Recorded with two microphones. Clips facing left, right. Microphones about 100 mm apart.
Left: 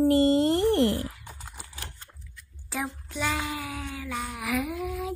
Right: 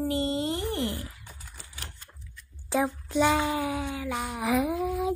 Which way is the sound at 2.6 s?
20° right (ahead or behind).